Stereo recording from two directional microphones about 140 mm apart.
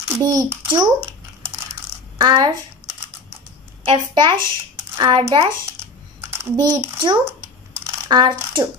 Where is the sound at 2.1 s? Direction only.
35° right (ahead or behind).